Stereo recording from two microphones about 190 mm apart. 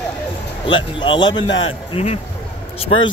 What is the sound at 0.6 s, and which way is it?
A man's voice, 25° left (ahead or behind).